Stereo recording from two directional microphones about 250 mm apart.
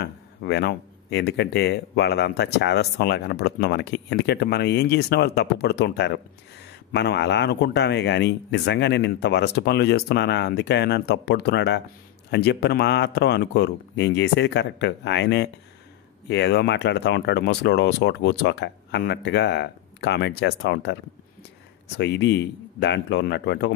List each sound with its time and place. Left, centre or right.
0.0 s speech: left